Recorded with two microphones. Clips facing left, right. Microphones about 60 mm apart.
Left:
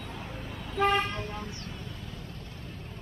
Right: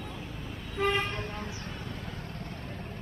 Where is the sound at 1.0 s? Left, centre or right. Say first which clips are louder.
Even; right.